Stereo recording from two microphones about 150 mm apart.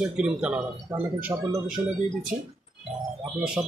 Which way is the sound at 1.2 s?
20° right (ahead or behind).